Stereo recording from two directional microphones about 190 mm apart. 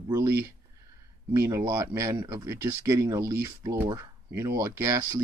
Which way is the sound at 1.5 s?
15° right (ahead or behind).